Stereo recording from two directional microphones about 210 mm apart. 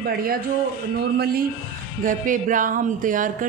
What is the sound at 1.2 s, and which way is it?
A woman's voice, 45° right (ahead or behind).